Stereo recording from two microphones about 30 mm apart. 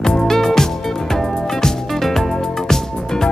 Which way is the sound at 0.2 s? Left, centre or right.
Centre.